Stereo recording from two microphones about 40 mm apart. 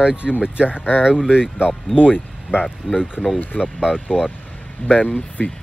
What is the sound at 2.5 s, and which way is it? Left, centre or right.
Speech, right.